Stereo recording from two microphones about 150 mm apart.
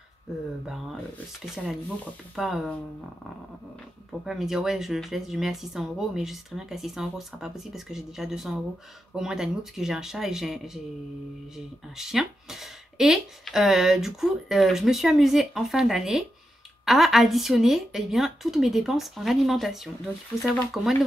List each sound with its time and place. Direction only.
1.4 s speech: 5° right (ahead or behind)
4.3 s speech: centre (ahead or behind)